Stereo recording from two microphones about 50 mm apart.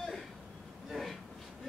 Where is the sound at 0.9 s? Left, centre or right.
Centre.